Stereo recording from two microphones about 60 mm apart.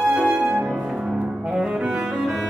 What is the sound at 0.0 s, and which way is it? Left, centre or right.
Music, centre.